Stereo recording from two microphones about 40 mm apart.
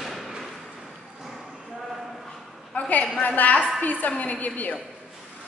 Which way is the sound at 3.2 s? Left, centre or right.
Left.